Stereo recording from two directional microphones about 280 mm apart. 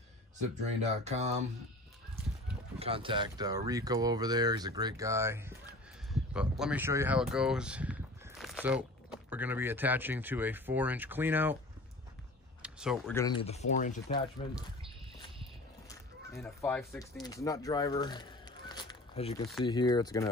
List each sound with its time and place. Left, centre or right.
0.4 s speech: right
2.8 s speech: centre
12.6 s speech: centre
13.1 s speech: centre
16.3 s speech: centre